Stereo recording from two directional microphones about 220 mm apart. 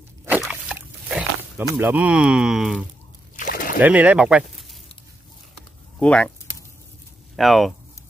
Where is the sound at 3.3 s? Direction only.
40° left (ahead or behind).